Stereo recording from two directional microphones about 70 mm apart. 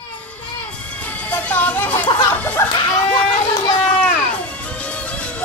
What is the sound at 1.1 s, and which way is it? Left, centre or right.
Music, left.